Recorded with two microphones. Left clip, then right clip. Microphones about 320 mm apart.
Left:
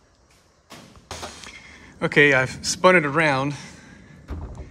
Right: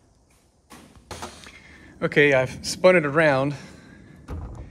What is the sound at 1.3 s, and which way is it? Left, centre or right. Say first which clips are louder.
Speech: left 4 dB; centre.